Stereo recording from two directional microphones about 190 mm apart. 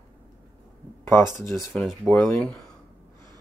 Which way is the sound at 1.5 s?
Centre (ahead or behind).